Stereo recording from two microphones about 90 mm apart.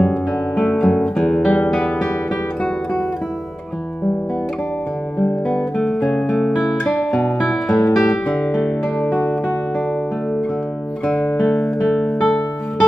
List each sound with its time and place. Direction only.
0.6 s music: 10° left (ahead or behind)
5.5 s guitar: 5° left (ahead or behind)
7.9 s music: centre (ahead or behind)
11.1 s music: 5° left (ahead or behind)